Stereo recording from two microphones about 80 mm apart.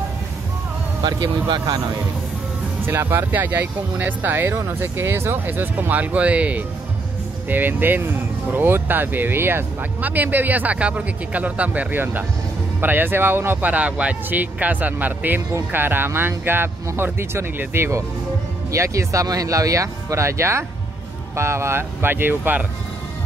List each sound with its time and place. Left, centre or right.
1.0 s speech: right
2.8 s speech: right
18.7 s speech: right